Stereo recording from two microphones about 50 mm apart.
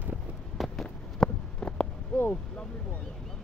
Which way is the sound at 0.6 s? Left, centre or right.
Centre.